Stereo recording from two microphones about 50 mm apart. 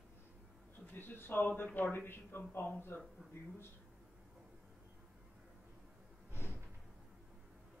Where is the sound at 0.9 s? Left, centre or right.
Left.